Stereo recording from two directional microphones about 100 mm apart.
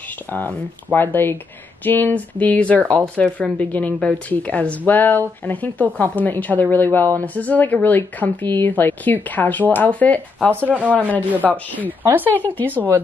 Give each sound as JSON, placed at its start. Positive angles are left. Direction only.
{"t": 0.9, "sound": "a woman's voice", "side_deg": 20}
{"t": 10.5, "sound": "speech", "side_deg": -20}
{"t": 11.5, "sound": "a woman's voice", "side_deg": 15}
{"t": 12.6, "sound": "speech", "side_deg": -20}